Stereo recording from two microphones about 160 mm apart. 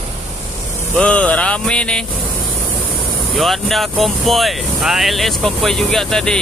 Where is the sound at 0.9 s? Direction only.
5° left (ahead or behind).